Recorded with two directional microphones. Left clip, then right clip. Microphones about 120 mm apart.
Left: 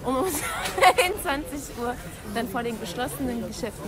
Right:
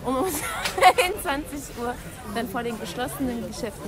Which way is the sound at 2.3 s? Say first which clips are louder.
Even; 25° left (ahead or behind).